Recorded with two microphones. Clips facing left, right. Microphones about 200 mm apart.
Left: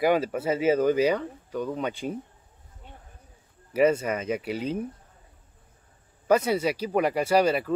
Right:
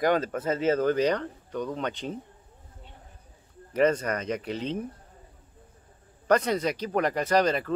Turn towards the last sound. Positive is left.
turn(degrees=10)  # may be behind; listen again after turning